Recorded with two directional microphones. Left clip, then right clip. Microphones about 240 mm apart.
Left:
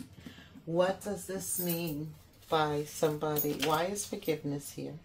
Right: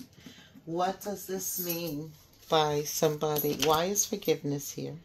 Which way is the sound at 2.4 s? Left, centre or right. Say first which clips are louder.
Right 4 dB; right.